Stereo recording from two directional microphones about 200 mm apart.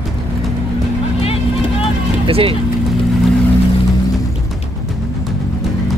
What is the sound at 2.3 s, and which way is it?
Speech, 30° right (ahead or behind).